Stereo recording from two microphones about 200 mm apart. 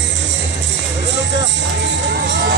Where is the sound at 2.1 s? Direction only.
55° right (ahead or behind).